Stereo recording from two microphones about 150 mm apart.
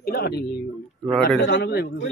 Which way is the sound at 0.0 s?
90° left.